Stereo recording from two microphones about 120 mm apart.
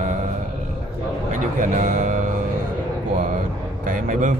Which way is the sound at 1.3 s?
90° right.